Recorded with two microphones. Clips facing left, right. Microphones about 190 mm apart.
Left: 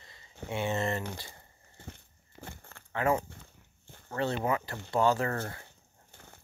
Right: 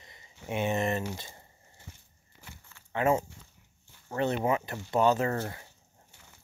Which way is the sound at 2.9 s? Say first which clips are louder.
Right 2 dB; 25° right (ahead or behind).